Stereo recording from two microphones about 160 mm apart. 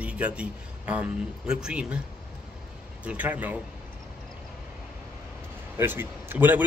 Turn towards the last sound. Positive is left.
turn(degrees=-10)  # may be behind; listen again after turning